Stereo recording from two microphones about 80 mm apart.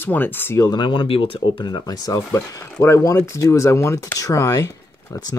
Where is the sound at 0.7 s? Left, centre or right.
Left.